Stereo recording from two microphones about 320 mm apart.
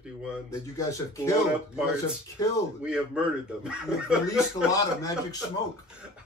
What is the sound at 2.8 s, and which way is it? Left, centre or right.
Speech, centre.